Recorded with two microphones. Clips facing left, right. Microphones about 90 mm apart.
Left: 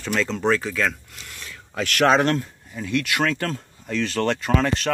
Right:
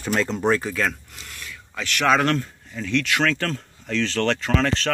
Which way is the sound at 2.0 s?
25° left (ahead or behind).